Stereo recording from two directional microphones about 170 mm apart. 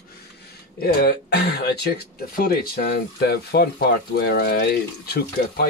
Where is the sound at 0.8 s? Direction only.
70° left (ahead or behind).